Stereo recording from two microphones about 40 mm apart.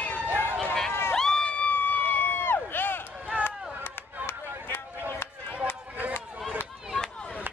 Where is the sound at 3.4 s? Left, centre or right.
Left.